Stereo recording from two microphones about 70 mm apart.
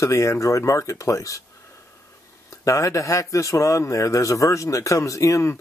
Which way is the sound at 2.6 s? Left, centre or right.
Left.